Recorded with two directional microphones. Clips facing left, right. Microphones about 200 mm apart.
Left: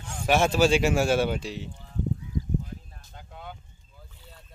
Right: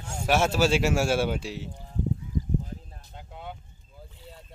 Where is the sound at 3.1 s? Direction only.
20° right (ahead or behind).